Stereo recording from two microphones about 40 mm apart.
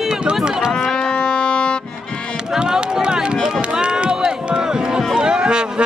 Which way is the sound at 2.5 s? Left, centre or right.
Centre.